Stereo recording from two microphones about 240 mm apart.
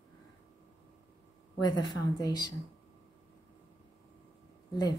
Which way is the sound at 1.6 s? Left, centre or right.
Centre.